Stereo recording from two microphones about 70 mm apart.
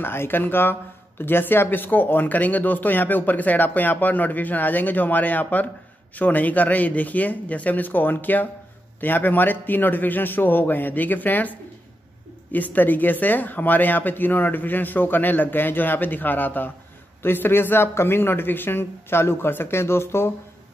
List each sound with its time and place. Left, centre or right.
0.0 s speech: left
12.5 s a man's voice: left